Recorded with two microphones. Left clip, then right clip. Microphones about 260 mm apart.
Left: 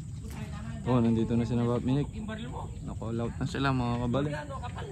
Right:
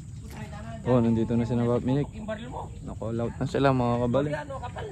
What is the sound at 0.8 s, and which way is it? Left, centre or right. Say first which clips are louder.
Speech: right 4 dB; centre.